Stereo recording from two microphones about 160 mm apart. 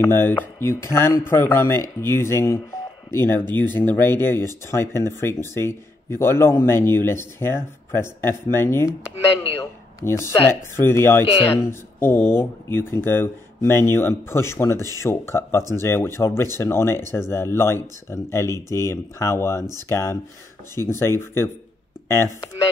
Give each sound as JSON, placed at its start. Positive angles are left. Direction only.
{"t": 0.0, "sound": "speech", "side_deg": 15}
{"t": 9.9, "sound": "speech", "side_deg": 15}